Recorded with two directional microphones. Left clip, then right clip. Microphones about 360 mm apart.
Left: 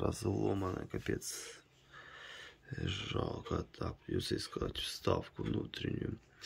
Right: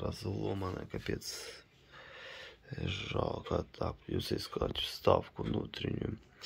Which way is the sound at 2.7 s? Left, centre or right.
Centre.